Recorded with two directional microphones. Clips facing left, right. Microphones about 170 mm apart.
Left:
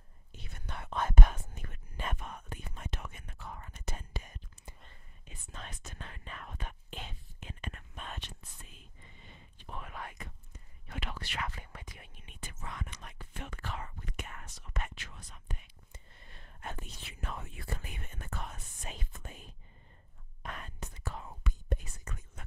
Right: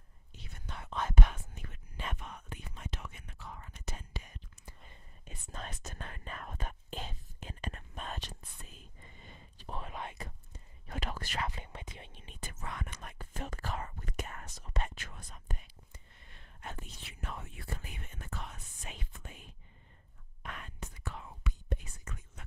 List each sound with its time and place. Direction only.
0.3 s whispering: 60° left (ahead or behind)
5.2 s whispering: 40° right (ahead or behind); by 10.2 s 25° right (ahead or behind)
10.2 s whispering: 40° right (ahead or behind)
11.5 s whispering: 25° right (ahead or behind)
12.5 s whispering: 60° right (ahead or behind); by 15.0 s 35° right (ahead or behind)
15.0 s whispering: 50° right (ahead or behind)
16.6 s whispering: 80° left; by 22.4 s 45° left (ahead or behind)